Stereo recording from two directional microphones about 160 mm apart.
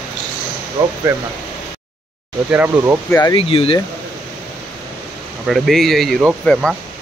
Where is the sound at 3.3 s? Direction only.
35° left (ahead or behind).